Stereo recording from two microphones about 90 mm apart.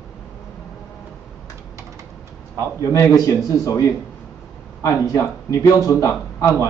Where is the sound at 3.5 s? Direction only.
35° left (ahead or behind).